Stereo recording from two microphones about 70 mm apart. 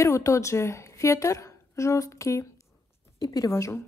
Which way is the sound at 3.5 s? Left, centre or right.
Left.